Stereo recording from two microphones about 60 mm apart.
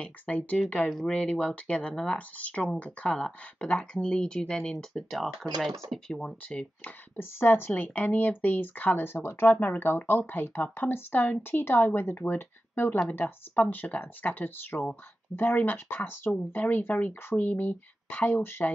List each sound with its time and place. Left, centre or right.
0.0 s speech: left
6.8 s speech: left